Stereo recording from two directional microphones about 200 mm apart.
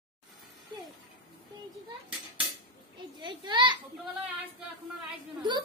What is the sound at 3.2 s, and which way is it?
Speech, 20° right (ahead or behind).